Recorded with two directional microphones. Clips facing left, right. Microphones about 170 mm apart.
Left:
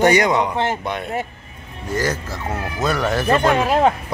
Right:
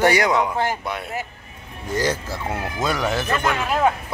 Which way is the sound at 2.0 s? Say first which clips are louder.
Even; 10° right (ahead or behind).